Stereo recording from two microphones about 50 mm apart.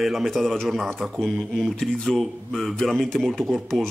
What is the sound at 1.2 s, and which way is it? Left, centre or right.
Speech, centre.